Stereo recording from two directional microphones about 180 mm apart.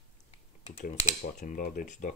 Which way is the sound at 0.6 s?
40° left (ahead or behind).